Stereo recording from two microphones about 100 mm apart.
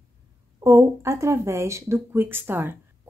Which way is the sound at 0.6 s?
30° right (ahead or behind).